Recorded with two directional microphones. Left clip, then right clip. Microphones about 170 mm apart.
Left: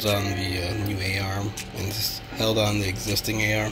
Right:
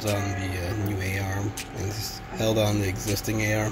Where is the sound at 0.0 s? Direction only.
10° right (ahead or behind); by 3.6 s 25° right (ahead or behind).